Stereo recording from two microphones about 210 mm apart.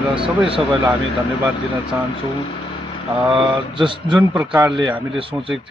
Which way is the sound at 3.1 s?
5° right (ahead or behind).